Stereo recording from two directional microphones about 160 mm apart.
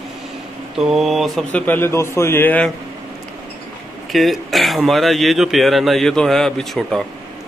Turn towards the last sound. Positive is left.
turn(degrees=0)  # may be behind; listen again after turning